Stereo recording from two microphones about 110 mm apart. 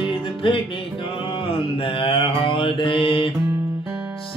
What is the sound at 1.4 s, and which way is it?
Mantra, 55° left (ahead or behind).